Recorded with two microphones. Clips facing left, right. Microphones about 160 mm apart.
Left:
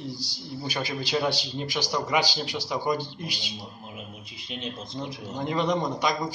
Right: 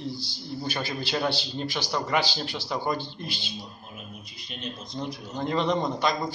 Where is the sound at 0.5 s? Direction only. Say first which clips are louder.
Even; 10° left (ahead or behind).